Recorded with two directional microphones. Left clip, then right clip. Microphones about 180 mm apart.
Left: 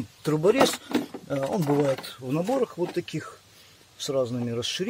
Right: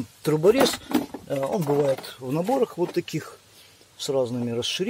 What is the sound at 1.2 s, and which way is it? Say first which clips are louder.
Speech: right 2 dB; 20° right (ahead or behind).